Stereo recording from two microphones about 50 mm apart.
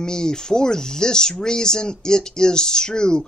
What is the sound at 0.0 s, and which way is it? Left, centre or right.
Speech, centre.